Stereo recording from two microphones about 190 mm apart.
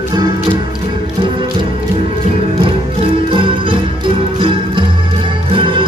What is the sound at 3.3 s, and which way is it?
Music, 25° right (ahead or behind).